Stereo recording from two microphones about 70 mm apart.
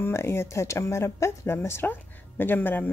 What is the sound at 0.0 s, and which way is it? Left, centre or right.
Speech, left.